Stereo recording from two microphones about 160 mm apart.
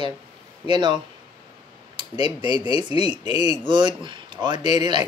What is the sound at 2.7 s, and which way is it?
Speech, 35° left (ahead or behind).